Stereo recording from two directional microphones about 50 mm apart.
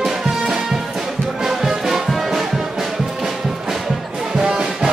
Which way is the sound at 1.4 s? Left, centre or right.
Centre.